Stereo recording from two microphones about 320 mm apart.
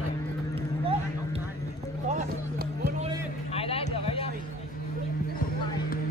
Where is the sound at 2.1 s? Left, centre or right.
Right.